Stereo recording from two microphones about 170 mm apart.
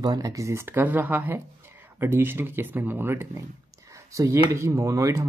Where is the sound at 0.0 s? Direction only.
20° right (ahead or behind).